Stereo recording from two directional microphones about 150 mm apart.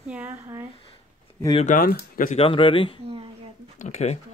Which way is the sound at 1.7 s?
70° left (ahead or behind).